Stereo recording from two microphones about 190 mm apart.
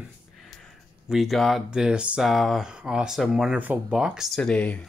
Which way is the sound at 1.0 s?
Centre (ahead or behind).